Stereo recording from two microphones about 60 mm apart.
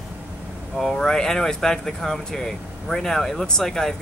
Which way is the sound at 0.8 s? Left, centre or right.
Centre.